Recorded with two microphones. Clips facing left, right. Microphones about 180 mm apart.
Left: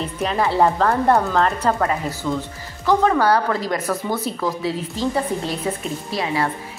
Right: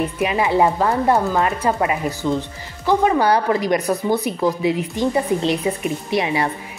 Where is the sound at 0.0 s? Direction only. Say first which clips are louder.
Right 2 dB; 10° right (ahead or behind).